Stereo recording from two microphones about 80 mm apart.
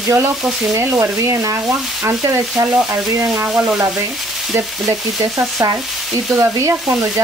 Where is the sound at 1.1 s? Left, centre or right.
Right.